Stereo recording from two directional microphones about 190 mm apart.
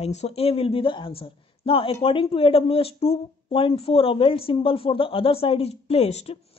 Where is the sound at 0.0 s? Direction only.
35° left (ahead or behind).